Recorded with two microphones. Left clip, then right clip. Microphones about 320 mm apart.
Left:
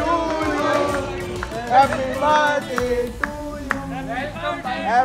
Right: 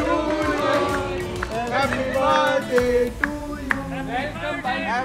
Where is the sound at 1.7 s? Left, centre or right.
Left.